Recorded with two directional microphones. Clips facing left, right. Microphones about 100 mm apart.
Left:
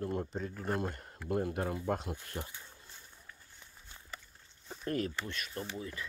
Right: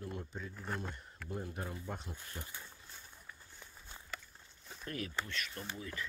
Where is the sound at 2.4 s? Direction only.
45° left (ahead or behind).